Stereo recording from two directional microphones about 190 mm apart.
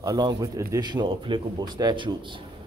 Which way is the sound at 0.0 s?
20° right (ahead or behind).